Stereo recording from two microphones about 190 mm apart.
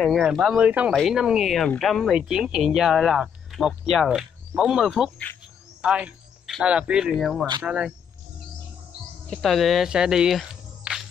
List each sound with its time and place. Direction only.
0.0 s speech: 5° right (ahead or behind)
9.3 s speech: centre (ahead or behind)